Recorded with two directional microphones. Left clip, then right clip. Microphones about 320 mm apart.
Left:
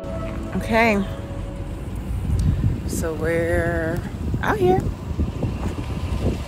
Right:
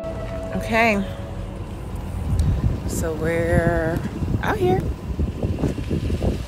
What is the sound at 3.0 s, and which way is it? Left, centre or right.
Speech, centre.